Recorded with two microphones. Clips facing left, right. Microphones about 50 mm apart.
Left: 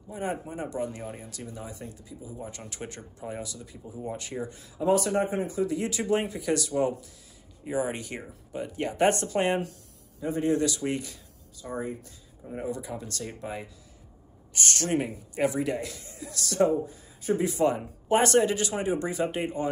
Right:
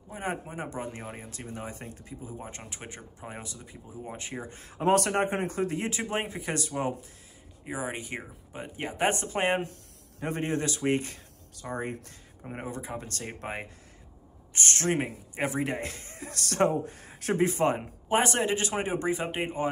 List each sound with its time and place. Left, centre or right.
0.1 s speech: right
4.6 s speech: right
7.6 s speech: centre
10.2 s speech: right
11.6 s speech: right
12.5 s speech: right
17.4 s speech: right
18.0 s speech: centre